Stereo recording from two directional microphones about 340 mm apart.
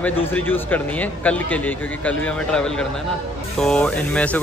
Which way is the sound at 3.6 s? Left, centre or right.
Centre.